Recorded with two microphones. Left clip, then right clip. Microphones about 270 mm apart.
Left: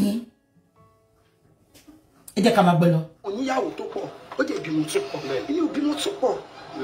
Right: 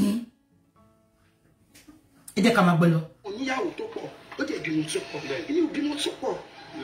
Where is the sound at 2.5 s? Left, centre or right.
Centre.